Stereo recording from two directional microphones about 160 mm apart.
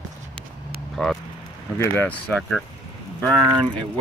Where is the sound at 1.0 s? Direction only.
5° left (ahead or behind).